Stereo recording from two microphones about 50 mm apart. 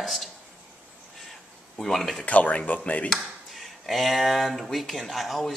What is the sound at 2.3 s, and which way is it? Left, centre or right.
Speech, left.